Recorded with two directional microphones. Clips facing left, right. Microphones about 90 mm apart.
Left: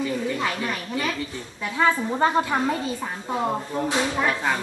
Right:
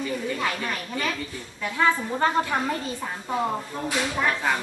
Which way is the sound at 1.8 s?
20° left (ahead or behind).